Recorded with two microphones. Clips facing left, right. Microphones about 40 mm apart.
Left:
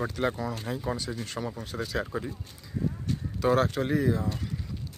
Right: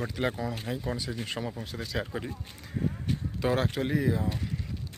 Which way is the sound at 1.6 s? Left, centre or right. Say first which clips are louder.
Left 2 dB; centre.